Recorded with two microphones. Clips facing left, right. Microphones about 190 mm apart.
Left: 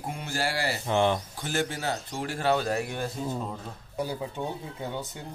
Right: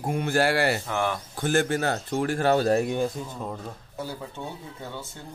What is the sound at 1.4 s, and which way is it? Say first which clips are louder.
Speech: right 7 dB; 50° right (ahead or behind).